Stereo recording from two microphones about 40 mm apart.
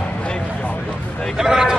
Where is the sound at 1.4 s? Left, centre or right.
Centre.